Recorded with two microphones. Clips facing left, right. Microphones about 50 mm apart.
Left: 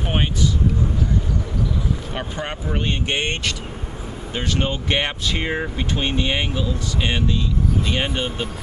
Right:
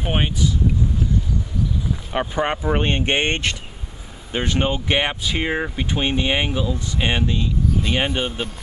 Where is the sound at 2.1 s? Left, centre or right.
Centre.